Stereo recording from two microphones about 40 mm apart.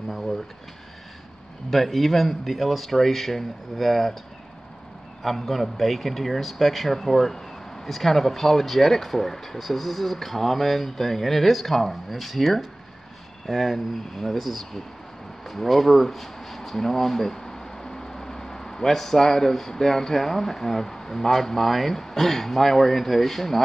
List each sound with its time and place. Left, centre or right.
0.1 s speech: centre
1.7 s a man's voice: centre
5.2 s a man's voice: centre